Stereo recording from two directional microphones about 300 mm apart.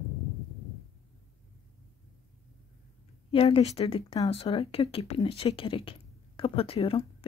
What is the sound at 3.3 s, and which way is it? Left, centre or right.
Speech, centre.